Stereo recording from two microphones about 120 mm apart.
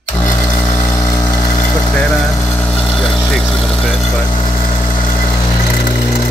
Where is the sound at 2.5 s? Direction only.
10° left (ahead or behind).